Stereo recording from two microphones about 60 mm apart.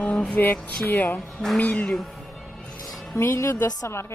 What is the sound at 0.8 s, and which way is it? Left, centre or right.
Speech, left.